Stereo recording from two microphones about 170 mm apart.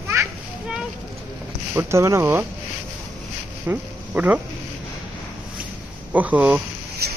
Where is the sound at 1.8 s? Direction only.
15° right (ahead or behind).